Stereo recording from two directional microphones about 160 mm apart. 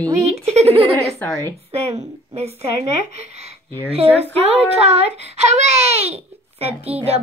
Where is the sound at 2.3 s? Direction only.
40° right (ahead or behind).